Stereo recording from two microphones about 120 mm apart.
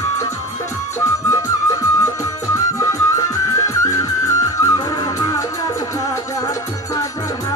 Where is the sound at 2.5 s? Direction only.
25° left (ahead or behind).